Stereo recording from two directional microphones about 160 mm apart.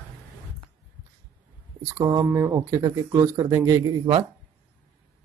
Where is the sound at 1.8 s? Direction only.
20° right (ahead or behind).